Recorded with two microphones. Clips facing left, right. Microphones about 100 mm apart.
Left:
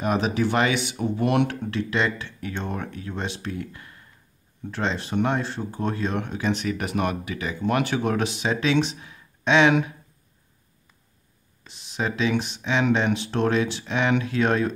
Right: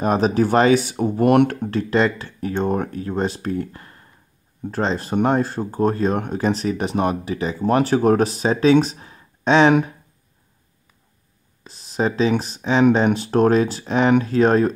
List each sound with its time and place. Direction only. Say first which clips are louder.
0.0 s speech: right 5 dB; 40° right (ahead or behind)
11.6 s speech: right 7 dB; 35° right (ahead or behind)